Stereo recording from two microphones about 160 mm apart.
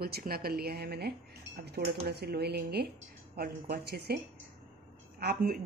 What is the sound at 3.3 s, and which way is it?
Speech, 75° right (ahead or behind).